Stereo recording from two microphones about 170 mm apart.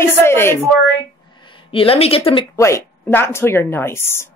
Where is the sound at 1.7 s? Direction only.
35° left (ahead or behind).